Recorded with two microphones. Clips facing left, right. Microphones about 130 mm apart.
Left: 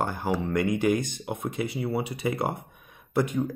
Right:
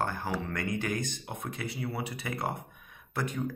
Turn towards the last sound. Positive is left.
turn(degrees=15)  # may be behind; listen again after turning